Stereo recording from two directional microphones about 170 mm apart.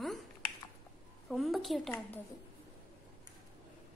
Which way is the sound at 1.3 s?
Centre (ahead or behind).